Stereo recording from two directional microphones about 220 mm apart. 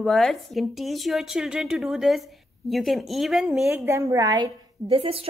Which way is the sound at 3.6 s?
10° right (ahead or behind).